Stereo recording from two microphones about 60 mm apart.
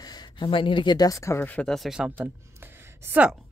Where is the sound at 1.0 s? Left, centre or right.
Left.